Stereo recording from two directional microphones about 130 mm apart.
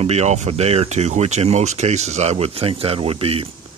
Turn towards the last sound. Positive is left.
turn(degrees=-50)  # may be behind; listen again after turning